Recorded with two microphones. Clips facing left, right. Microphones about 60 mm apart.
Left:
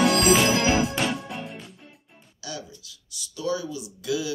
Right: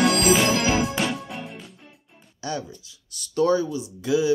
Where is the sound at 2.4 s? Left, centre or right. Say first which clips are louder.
Right 7 dB; right.